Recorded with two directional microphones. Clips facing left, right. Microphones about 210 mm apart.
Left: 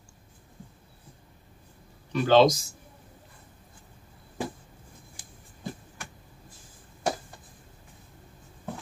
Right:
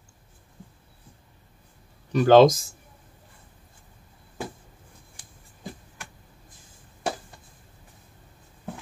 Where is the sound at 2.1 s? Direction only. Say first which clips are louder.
Right 5 dB; 45° right (ahead or behind).